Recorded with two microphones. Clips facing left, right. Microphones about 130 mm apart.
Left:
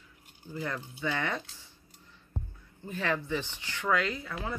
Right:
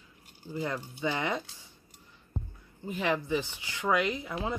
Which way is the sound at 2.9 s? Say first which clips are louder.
Right 2 dB; 15° right (ahead or behind).